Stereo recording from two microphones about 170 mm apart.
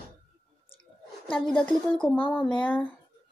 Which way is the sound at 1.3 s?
5° left (ahead or behind).